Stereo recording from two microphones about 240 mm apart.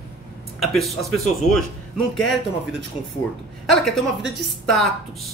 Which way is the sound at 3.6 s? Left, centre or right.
Centre.